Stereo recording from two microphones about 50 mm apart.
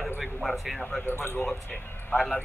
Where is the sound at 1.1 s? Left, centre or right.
Left.